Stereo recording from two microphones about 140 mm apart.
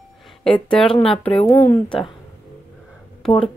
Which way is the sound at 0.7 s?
5° left (ahead or behind).